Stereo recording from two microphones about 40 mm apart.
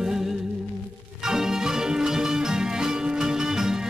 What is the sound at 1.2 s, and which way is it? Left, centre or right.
Music, centre.